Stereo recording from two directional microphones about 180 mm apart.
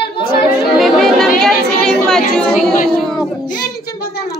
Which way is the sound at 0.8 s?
Centre (ahead or behind).